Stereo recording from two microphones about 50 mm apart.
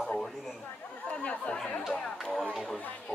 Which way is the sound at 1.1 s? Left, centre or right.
Centre.